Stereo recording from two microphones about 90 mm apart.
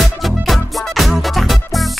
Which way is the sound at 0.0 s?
Centre (ahead or behind).